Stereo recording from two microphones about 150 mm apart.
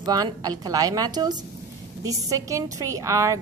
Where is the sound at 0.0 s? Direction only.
25° right (ahead or behind).